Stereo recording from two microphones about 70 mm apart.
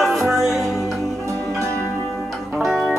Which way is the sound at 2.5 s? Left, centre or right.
Centre.